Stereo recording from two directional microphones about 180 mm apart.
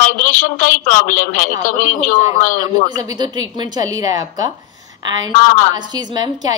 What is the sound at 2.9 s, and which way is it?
A woman's voice, 20° right (ahead or behind).